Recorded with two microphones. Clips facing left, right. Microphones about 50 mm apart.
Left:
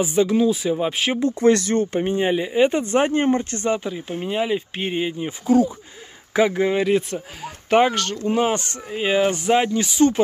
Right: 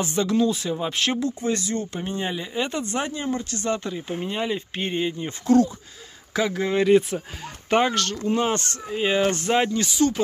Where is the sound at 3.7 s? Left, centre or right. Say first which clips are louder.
Left 3 dB; centre.